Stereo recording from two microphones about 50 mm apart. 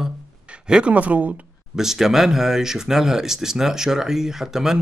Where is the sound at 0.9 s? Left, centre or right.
Right.